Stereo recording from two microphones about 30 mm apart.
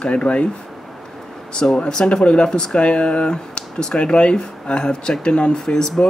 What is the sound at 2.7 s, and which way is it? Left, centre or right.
Speech, left.